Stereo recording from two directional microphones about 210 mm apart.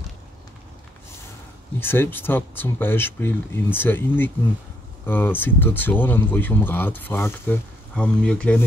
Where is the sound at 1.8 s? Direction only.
10° left (ahead or behind).